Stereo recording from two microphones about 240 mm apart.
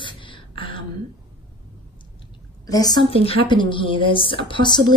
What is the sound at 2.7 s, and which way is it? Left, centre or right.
A woman's voice, centre.